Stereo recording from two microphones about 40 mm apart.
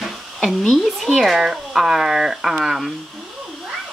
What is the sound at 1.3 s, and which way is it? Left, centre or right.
Speech, centre.